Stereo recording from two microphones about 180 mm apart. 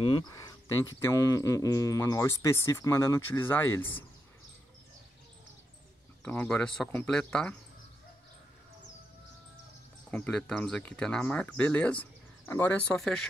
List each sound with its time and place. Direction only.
0.0 s speech: 25° left (ahead or behind)
6.2 s speech: 10° left (ahead or behind)
10.1 s speech: 10° left (ahead or behind)